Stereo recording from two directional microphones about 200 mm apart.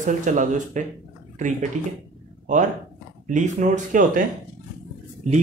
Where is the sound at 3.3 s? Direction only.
40° right (ahead or behind).